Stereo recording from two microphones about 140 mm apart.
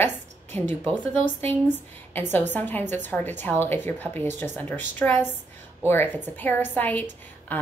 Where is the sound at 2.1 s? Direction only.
15° left (ahead or behind).